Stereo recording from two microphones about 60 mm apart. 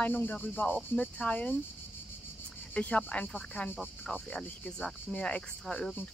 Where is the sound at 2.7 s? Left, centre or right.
Left.